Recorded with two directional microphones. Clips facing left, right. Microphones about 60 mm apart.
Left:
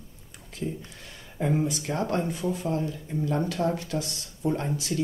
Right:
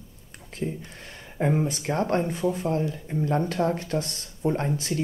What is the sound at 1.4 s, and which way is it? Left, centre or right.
Speech, right.